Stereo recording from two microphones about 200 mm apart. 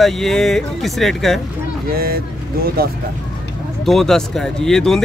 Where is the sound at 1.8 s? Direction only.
50° right (ahead or behind).